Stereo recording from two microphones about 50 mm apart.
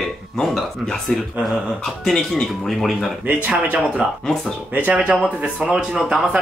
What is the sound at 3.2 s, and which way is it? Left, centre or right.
Speech, right.